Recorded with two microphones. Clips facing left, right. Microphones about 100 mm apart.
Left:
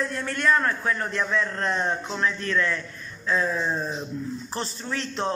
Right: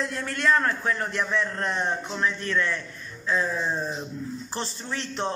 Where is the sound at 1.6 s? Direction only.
15° right (ahead or behind).